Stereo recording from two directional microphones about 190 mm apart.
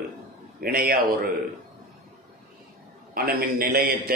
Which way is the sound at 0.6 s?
50° right (ahead or behind).